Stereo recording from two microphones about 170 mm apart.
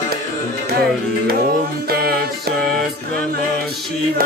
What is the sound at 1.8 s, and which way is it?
Music, 65° right (ahead or behind).